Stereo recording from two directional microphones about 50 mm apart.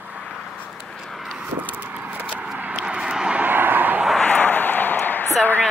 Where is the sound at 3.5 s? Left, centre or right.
Right.